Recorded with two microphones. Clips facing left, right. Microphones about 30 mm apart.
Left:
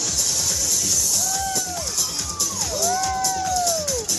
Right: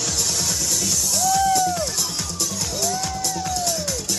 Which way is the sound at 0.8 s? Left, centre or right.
Right.